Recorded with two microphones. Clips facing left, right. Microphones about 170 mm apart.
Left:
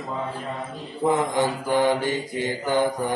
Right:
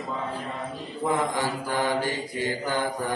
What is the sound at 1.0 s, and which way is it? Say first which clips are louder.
Mantra: left 4 dB; 20° left (ahead or behind).